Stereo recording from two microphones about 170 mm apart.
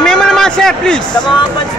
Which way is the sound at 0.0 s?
5° left (ahead or behind).